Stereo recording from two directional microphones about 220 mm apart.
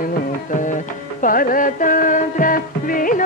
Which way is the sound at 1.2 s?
40° left (ahead or behind).